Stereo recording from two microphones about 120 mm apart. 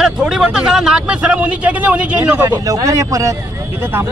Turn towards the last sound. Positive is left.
turn(degrees=-20)  # may be behind; listen again after turning